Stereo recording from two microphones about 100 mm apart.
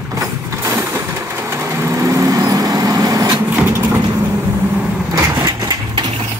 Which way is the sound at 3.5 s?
20° right (ahead or behind).